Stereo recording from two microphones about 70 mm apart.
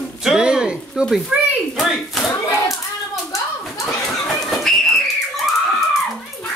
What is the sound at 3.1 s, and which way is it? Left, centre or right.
Hands, left.